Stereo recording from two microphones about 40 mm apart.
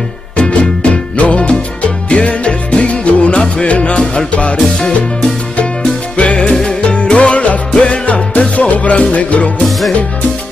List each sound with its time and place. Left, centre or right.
0.4 s music: left
4.7 s music: centre
5.6 s music: left
6.5 s music: centre; by 9.5 s left
9.7 s music: centre